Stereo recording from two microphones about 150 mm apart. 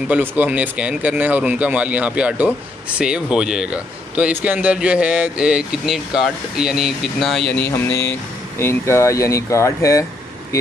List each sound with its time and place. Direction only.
0.1 s speech: 10° right (ahead or behind)
7.6 s speech: 15° left (ahead or behind)